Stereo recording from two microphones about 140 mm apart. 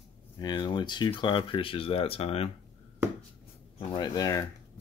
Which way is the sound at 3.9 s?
30° left (ahead or behind).